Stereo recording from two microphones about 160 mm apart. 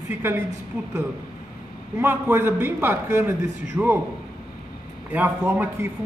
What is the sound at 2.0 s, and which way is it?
A man's voice, 15° right (ahead or behind).